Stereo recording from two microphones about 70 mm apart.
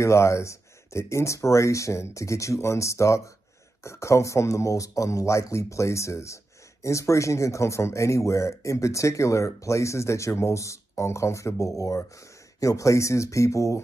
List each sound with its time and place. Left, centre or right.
0.0 s speech: left